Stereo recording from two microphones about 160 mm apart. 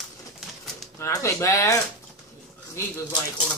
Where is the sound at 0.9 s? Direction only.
20° left (ahead or behind).